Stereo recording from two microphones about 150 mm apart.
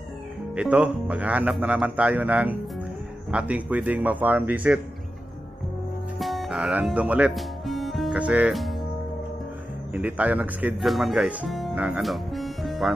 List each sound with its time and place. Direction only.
0.6 s speech: 10° right (ahead or behind)
6.1 s speech: centre (ahead or behind)
9.9 s speech: 10° right (ahead or behind)